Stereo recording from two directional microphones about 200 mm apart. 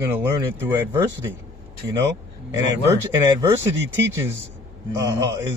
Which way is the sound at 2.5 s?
15° right (ahead or behind).